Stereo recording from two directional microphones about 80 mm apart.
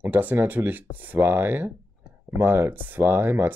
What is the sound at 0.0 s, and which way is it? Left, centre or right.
Speech, right.